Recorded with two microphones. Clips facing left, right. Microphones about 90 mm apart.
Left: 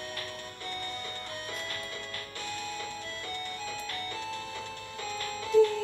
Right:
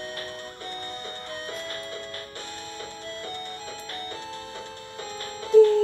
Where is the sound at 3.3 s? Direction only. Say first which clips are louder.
Right 1 dB; 35° right (ahead or behind).